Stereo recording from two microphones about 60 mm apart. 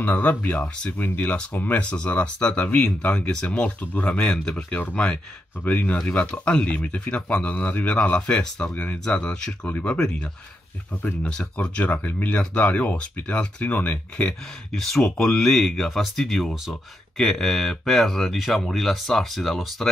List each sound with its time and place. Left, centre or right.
0.0 s speech: left
14.7 s speech: centre